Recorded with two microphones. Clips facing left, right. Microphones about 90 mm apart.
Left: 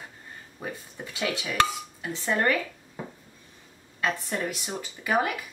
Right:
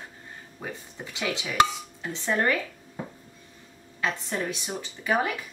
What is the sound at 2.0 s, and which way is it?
Speech, centre (ahead or behind).